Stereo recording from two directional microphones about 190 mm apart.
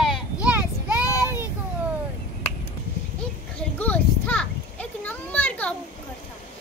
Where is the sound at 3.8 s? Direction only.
5° left (ahead or behind).